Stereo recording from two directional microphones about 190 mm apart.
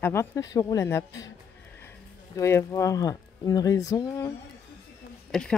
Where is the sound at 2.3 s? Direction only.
15° left (ahead or behind).